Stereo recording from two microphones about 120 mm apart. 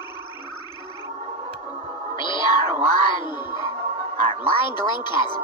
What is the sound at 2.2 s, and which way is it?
Music, 40° left (ahead or behind).